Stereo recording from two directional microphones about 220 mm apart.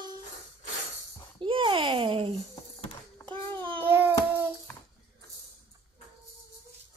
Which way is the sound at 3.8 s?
10° right (ahead or behind).